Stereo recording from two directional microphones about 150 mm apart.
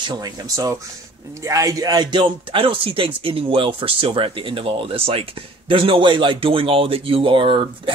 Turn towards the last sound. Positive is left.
turn(degrees=-35)  # may be behind; listen again after turning